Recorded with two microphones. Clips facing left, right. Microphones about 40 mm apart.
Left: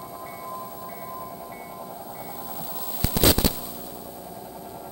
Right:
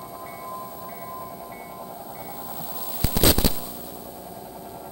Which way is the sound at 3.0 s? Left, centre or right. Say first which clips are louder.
Even; centre.